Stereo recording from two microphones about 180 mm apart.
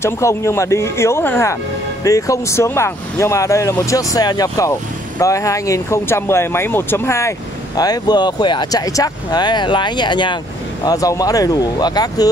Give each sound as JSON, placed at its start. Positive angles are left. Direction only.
{"t": 0.0, "sound": "speech", "side_deg": 15}